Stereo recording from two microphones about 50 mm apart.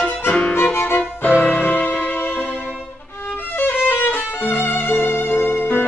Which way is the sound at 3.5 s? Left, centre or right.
Left.